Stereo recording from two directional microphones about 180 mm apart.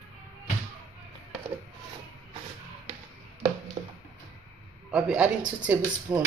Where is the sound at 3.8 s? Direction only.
40° right (ahead or behind).